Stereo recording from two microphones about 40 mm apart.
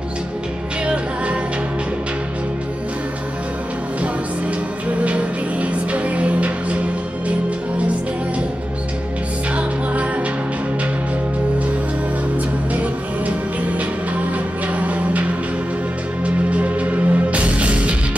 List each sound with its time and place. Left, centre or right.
0.8 s music: right
5.0 s music: right
14.8 s music: right
16.4 s music: right